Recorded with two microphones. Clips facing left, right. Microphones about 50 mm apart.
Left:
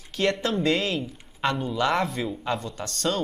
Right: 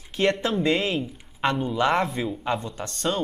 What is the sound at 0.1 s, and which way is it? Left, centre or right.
A man's voice, right.